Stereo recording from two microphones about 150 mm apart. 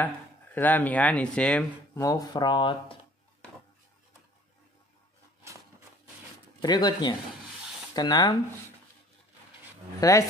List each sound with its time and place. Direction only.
0.6 s speech: 10° left (ahead or behind)
2.0 s speech: 20° left (ahead or behind)
6.6 s speech: 30° left (ahead or behind)
9.9 s speech: 20° left (ahead or behind)